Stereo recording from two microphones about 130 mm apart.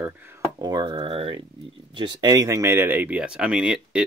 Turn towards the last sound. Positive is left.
turn(degrees=-5)  # may be behind; listen again after turning